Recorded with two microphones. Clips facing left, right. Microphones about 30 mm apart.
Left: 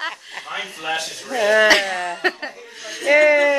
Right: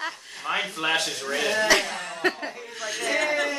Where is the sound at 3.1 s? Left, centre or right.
Left.